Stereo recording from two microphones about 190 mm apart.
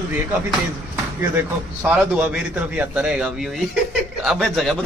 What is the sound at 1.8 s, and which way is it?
A man's voice, 10° right (ahead or behind).